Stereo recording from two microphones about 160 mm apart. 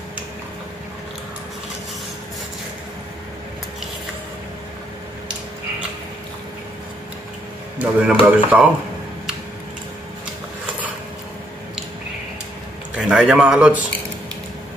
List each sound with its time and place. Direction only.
7.8 s a man's voice: 10° right (ahead or behind)
12.9 s a man's voice: 5° right (ahead or behind)